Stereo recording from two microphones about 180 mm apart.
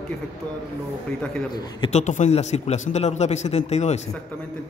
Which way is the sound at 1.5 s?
25° left (ahead or behind).